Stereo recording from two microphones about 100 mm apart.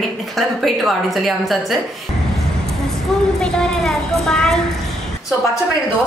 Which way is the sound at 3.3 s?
5° left (ahead or behind).